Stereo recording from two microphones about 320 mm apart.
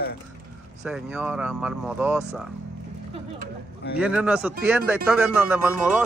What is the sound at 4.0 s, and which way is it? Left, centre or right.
Speech, centre.